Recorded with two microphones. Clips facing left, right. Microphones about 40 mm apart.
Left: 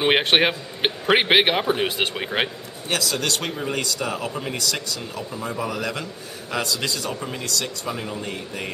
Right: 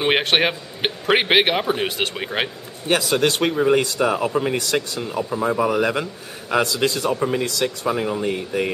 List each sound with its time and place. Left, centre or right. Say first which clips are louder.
0.0 s a man's voice: even; centre
2.9 s speech: right 6 dB; right